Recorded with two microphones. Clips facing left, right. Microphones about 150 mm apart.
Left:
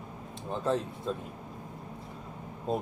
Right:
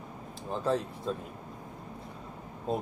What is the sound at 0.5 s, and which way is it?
Speech, centre (ahead or behind).